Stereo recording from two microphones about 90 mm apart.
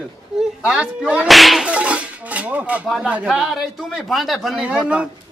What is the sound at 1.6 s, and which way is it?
Speech, 15° right (ahead or behind).